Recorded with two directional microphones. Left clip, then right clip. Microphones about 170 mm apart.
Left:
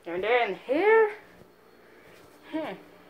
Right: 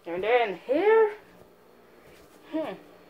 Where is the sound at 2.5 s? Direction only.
5° right (ahead or behind).